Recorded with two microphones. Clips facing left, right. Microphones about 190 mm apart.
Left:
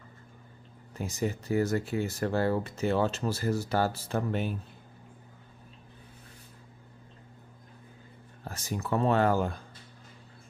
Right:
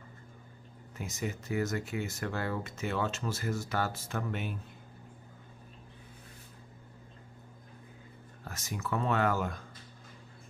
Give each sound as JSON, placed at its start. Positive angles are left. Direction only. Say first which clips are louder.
{"t": 0.9, "sound": "speech", "louder": "left 6 dB", "side_deg": 35}
{"t": 8.5, "sound": "speech", "louder": "left 4 dB", "side_deg": 35}